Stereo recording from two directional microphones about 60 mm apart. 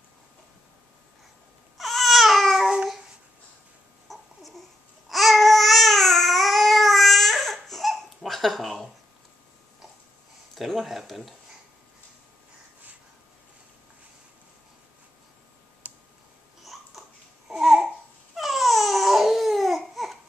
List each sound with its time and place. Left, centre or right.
1.8 s babbling: centre
4.1 s babbling: centre
10.5 s speech: centre
15.8 s clicking: right
17.5 s babbling: centre